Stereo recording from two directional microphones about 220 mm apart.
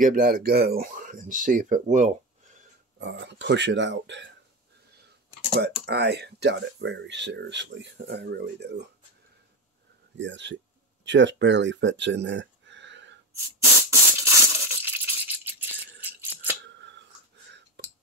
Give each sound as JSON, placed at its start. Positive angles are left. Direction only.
{"t": 0.0, "sound": "speech", "side_deg": -40}
{"t": 3.0, "sound": "speech", "side_deg": -50}
{"t": 5.5, "sound": "speech", "side_deg": -50}
{"t": 10.1, "sound": "speech", "side_deg": -55}
{"t": 13.8, "sound": "a sound", "side_deg": -15}
{"t": 16.0, "sound": "rattle", "side_deg": -10}
{"t": 16.6, "sound": "a sound", "side_deg": -55}